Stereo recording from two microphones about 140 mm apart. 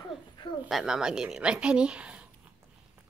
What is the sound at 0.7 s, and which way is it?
Speech, 5° right (ahead or behind).